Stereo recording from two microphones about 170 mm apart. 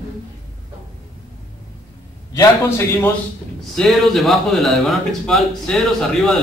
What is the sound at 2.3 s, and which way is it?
Speech, 20° left (ahead or behind).